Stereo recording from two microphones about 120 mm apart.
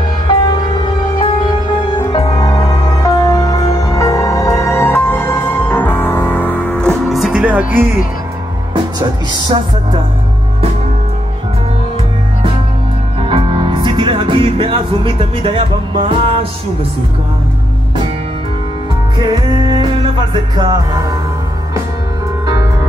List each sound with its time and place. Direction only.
1.1 s music: 35° left (ahead or behind); by 8.0 s 15° right (ahead or behind)
13.2 s music: 50° right (ahead or behind)
19.1 s music: 40° right (ahead or behind)